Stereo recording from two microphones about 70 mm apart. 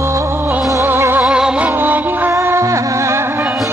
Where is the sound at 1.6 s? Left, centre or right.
Right.